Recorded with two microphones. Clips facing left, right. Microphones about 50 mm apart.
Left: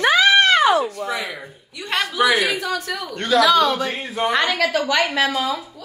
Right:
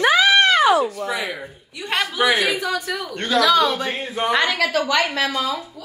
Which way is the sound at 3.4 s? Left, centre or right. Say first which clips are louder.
Left 1 dB; centre.